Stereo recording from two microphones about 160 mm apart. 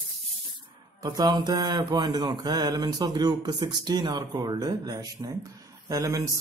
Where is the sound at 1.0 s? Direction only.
25° right (ahead or behind).